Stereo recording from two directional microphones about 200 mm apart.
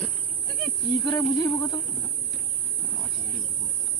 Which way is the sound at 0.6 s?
10° left (ahead or behind).